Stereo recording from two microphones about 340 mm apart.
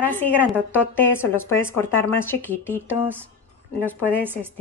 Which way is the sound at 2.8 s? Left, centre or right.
Centre.